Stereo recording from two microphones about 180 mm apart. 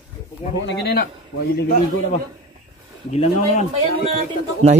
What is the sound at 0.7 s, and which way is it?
Speech, 60° left (ahead or behind).